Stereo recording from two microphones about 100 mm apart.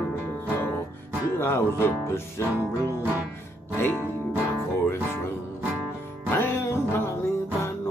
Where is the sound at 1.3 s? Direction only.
25° left (ahead or behind).